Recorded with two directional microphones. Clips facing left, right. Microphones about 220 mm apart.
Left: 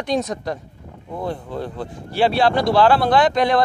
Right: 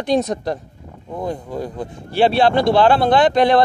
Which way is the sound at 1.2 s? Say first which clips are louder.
Right 2 dB; 15° right (ahead or behind).